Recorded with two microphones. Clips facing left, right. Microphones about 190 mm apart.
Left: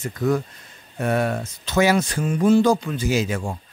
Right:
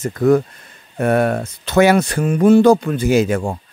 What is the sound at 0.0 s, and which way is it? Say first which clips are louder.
Speech: right 8 dB; 55° right (ahead or behind).